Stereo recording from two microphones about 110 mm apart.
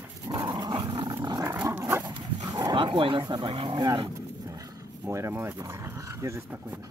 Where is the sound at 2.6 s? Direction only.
45° right (ahead or behind).